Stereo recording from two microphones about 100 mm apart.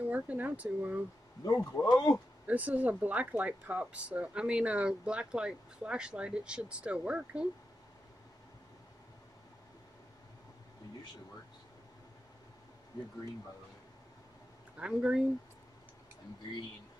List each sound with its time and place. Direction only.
0.0 s speech: 15° right (ahead or behind)
1.4 s speech: 30° left (ahead or behind)
1.7 s speech: 15° left (ahead or behind)
2.4 s speech: 15° right (ahead or behind)
14.8 s speech: 10° right (ahead or behind)